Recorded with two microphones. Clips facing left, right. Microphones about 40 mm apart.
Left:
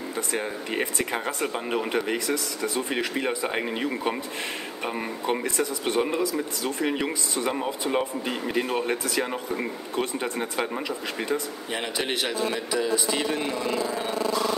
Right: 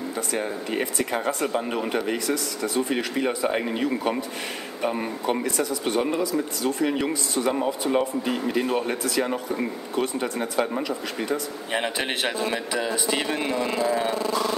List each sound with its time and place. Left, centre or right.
0.9 s speech: centre
2.1 s speech: left
2.9 s speech: centre
11.7 s speech: centre